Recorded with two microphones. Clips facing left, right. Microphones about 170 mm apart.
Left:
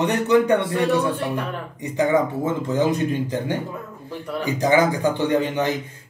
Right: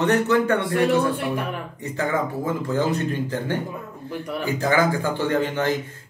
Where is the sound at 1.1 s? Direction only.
10° right (ahead or behind).